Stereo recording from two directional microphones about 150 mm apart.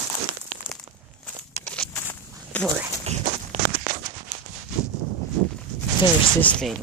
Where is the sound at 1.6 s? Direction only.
5° left (ahead or behind).